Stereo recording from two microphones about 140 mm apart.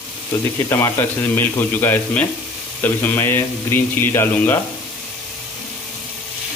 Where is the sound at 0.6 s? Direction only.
20° left (ahead or behind).